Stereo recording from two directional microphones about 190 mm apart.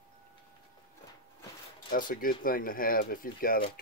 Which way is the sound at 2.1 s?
45° left (ahead or behind).